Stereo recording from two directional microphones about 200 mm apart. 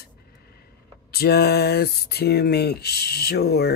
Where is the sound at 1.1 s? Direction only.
50° left (ahead or behind).